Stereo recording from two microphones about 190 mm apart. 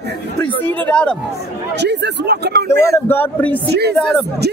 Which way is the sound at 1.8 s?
65° right (ahead or behind).